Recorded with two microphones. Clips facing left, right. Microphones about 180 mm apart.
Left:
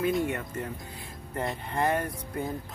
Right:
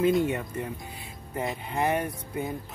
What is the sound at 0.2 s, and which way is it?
Speech, 15° right (ahead or behind).